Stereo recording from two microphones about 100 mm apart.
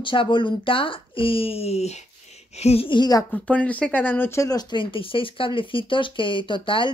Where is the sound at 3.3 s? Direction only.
15° left (ahead or behind).